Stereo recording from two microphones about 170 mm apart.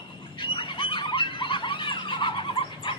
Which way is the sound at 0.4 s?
30° left (ahead or behind).